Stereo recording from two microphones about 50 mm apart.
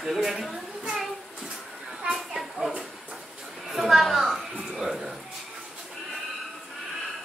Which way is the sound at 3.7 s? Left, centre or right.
Centre.